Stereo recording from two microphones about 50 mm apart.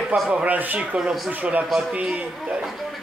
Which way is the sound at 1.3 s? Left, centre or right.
Right.